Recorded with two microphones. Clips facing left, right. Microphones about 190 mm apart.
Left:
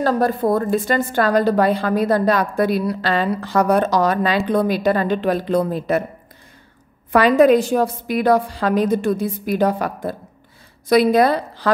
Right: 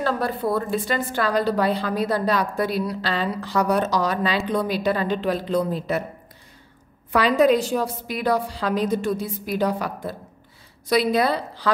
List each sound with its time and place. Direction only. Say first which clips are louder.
0.0 s a woman's voice: left 6 dB; 45° left (ahead or behind)
7.1 s a woman's voice: left 5 dB; 55° left (ahead or behind)